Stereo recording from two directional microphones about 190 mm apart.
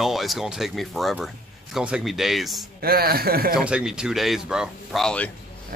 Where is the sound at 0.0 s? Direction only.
Centre (ahead or behind).